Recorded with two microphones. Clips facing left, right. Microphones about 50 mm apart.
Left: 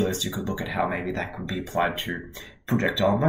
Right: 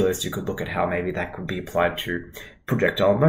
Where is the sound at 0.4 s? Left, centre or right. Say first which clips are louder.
Right 2 dB; centre.